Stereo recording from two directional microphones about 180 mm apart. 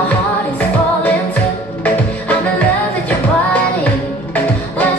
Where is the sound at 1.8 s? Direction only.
10° left (ahead or behind).